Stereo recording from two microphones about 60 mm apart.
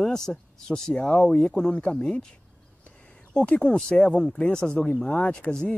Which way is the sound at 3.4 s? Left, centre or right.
Centre.